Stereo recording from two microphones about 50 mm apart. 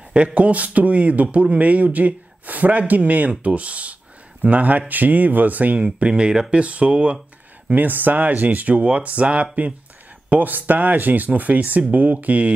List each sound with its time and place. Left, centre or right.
0.1 s speech: right
5.9 s speech: right
7.7 s speech: right